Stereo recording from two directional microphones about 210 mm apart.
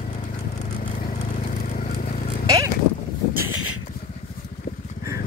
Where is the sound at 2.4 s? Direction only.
15° right (ahead or behind).